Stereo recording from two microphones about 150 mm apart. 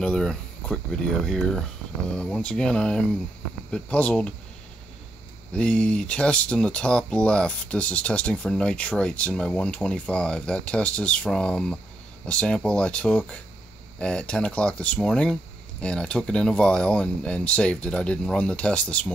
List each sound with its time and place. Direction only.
0.0 s speech: 5° left (ahead or behind)
5.5 s speech: 5° left (ahead or behind)